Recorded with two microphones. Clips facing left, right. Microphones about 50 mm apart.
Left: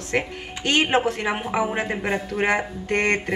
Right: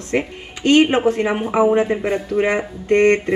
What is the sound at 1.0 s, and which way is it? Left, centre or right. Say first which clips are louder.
Speech: right 7 dB; right.